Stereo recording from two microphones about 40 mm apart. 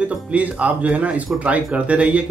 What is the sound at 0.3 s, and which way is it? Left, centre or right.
Speech, right.